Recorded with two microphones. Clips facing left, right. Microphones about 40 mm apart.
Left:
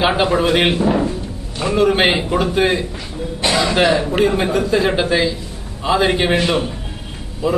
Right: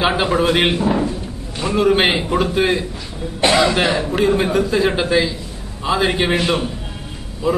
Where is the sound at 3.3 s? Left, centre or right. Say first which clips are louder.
Right 3 dB; right.